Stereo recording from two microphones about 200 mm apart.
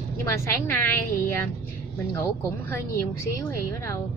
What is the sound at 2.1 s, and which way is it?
Speech, 15° left (ahead or behind).